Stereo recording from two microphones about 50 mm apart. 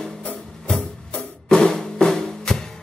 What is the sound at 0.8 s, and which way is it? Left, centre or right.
Music, left.